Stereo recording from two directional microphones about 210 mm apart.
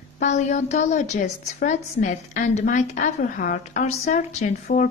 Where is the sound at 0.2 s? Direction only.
35° left (ahead or behind).